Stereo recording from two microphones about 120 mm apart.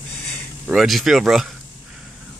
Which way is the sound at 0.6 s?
5° right (ahead or behind).